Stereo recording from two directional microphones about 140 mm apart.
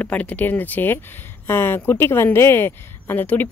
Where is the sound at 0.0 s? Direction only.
10° left (ahead or behind).